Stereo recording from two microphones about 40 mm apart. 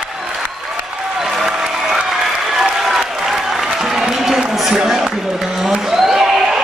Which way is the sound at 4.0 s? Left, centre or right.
Centre.